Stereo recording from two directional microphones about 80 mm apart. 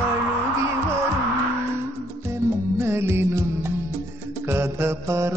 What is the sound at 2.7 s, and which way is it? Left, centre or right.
Music, right.